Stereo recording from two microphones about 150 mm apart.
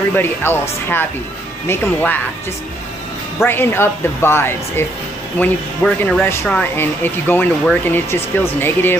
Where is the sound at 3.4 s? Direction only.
15° left (ahead or behind).